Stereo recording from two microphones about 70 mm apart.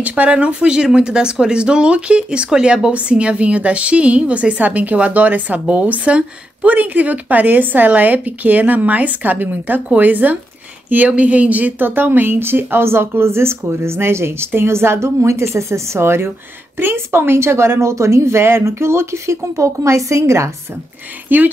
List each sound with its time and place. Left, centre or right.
0.0 s speech: centre; by 20.5 s right
21.3 s speech: right